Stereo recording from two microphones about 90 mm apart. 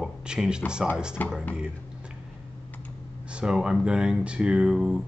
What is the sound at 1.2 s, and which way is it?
Speech, 20° left (ahead or behind).